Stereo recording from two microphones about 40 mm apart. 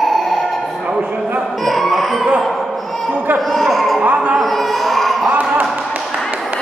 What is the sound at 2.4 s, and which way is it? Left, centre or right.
Music, centre.